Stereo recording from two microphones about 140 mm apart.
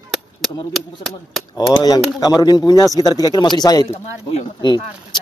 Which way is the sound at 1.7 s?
25° left (ahead or behind).